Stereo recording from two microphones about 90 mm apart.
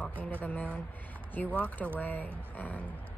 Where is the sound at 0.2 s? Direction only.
15° left (ahead or behind).